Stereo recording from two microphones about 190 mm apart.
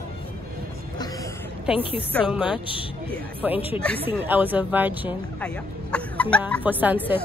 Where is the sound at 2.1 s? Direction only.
Centre (ahead or behind).